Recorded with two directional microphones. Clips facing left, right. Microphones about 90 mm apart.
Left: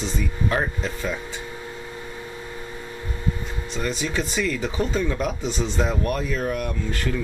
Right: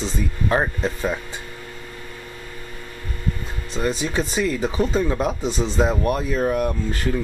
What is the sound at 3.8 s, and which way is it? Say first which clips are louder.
Speech: right 4 dB; 30° right (ahead or behind).